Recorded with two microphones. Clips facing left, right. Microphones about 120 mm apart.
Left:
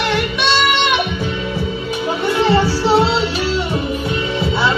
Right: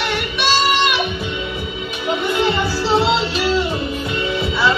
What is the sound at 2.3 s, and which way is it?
Music, 30° left (ahead or behind).